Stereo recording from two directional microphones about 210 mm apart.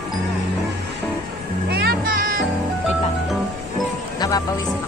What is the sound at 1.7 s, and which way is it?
Music, 50° right (ahead or behind).